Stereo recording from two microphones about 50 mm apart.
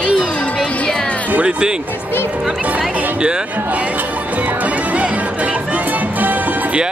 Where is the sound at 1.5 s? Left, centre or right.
Centre.